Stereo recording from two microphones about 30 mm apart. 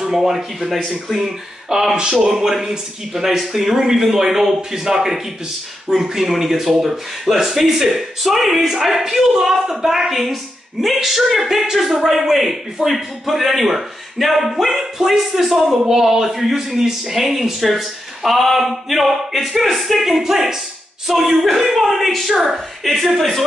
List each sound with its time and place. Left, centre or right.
0.1 s speech: centre
1.7 s speech: right
2.2 s speech: centre
3.8 s speech: centre
22.4 s speech: centre
23.0 s speech: centre